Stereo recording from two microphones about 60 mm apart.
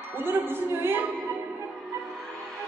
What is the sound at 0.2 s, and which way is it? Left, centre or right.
Speech, right.